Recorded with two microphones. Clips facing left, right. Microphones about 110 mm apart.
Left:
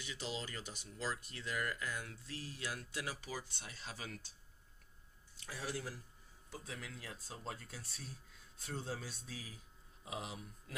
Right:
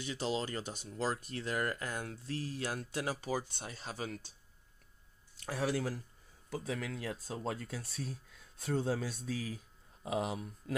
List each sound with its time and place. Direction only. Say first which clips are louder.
0.0 s speech: right 8 dB; 40° right (ahead or behind)
5.4 s speech: right 9 dB; 65° right (ahead or behind)
6.5 s speech: right 10 dB; 85° right
10.0 s speech: right 10 dB; 55° right (ahead or behind)